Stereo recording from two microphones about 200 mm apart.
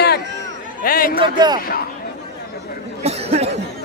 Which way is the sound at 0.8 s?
45° left (ahead or behind).